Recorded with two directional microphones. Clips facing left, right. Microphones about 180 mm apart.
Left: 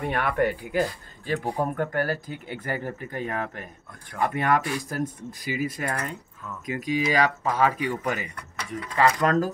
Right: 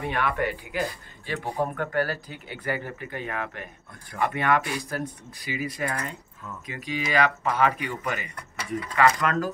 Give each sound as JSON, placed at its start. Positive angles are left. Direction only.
{"t": 0.0, "sound": "speech", "side_deg": 50}